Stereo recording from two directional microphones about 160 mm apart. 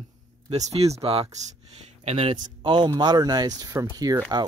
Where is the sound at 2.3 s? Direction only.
30° right (ahead or behind).